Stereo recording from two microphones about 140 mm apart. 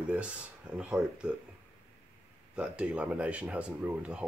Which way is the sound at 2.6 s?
10° right (ahead or behind).